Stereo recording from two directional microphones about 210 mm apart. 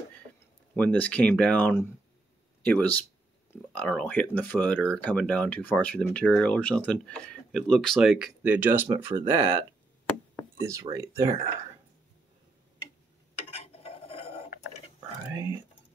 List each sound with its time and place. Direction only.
0.7 s speech: 5° left (ahead or behind); by 11.3 s 15° right (ahead or behind)
13.5 s cutlery: 30° left (ahead or behind)